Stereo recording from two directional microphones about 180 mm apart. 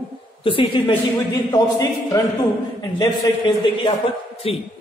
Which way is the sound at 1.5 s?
15° left (ahead or behind).